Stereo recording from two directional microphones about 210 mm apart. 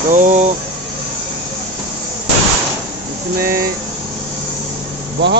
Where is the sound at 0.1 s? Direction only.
35° right (ahead or behind).